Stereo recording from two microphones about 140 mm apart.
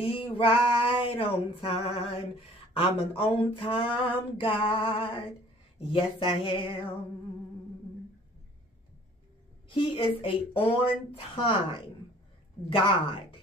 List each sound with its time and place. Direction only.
0.0 s male singing: 40° left (ahead or behind)
9.8 s male singing: 35° left (ahead or behind)